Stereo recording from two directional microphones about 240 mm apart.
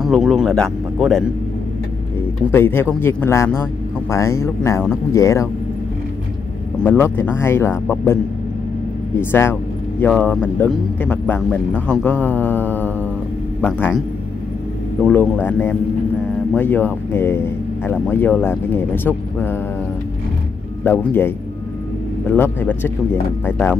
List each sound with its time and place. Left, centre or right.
0.0 s speech: centre
2.5 s speech: centre
6.8 s speech: centre
9.2 s speech: centre
15.0 s speech: centre
20.8 s speech: centre